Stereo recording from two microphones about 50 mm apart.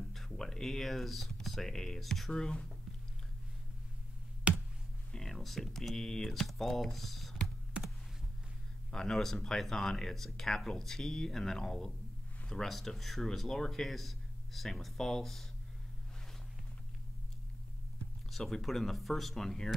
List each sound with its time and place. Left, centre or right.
0.1 s a sound: centre
1.7 s speech: centre
4.5 s a sound: right
5.1 s speech: centre
8.9 s speech: centre
18.3 s speech: centre